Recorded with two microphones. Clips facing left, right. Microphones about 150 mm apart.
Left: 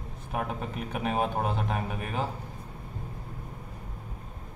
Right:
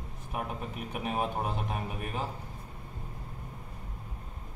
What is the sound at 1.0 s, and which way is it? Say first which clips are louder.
Speech: left 4 dB; 65° left (ahead or behind).